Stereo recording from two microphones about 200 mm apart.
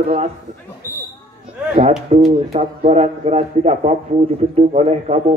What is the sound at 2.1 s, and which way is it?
Speech, 35° right (ahead or behind).